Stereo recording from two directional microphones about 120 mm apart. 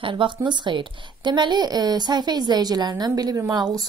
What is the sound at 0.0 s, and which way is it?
A woman's voice, 45° right (ahead or behind).